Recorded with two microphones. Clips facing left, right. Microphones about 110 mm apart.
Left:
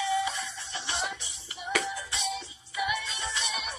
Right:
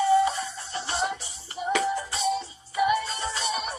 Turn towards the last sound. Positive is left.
turn(degrees=-35)  # may be behind; listen again after turning